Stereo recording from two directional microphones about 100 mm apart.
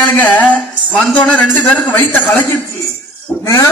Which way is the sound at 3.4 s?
30° left (ahead or behind).